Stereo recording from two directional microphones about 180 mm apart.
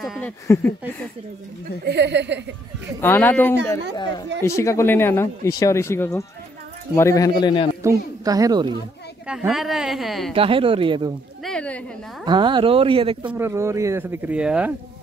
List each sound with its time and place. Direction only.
0.2 s speech: 10° left (ahead or behind)
1.9 s speech: 70° right (ahead or behind)
3.0 s speech: 10° left (ahead or behind)
3.9 s speech: 25° left (ahead or behind)
7.8 s a woman's voice: 20° right (ahead or behind)
9.3 s speech: 5° right (ahead or behind)
10.3 s speech: 30° right (ahead or behind)
11.4 s speech: 5° left (ahead or behind)
12.3 s speech: 25° right (ahead or behind)
13.2 s speech: 5° right (ahead or behind)